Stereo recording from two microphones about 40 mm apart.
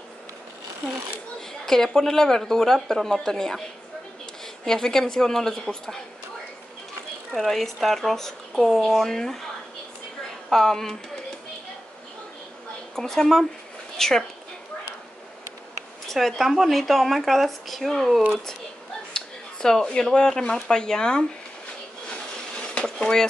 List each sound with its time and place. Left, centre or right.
1.7 s speech: centre
4.6 s speech: centre
7.3 s speech: centre
10.5 s speech: centre
12.9 s speech: centre
16.1 s speech: centre
19.1 s speech: centre
22.0 s a sound: left